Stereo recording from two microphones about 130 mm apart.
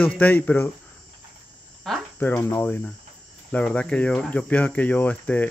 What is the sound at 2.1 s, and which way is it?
Speech, 15° left (ahead or behind).